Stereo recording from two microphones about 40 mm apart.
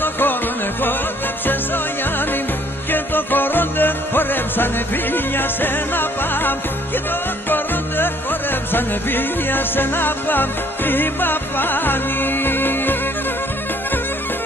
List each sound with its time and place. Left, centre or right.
0.0 s music: left
2.9 s music: left